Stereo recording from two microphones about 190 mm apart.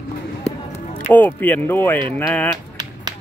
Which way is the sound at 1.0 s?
10° left (ahead or behind).